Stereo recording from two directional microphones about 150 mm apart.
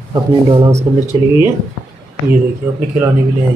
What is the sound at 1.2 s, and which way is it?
Speech, 20° right (ahead or behind).